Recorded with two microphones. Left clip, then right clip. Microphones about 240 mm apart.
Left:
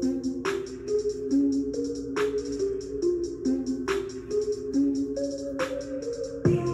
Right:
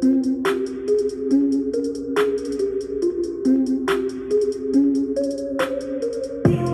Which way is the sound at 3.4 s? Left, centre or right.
Right.